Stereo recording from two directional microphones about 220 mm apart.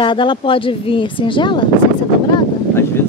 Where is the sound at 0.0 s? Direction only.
20° left (ahead or behind).